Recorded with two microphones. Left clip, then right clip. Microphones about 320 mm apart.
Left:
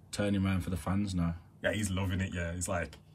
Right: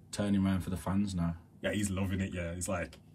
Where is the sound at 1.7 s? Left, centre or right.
Centre.